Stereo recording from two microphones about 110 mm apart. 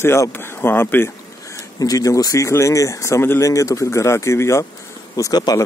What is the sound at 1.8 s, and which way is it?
Speech, 30° left (ahead or behind).